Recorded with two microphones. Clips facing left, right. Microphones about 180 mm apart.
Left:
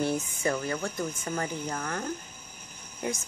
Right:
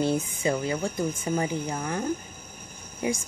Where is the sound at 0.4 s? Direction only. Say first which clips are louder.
Right 3 dB; 15° right (ahead or behind).